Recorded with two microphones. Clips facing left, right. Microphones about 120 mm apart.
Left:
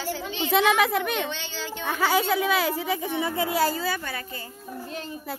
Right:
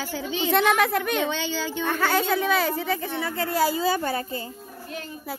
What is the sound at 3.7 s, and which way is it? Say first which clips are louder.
Speech: right 6 dB; 30° right (ahead or behind).